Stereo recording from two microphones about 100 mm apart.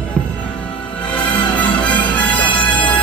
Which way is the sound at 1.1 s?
15° left (ahead or behind).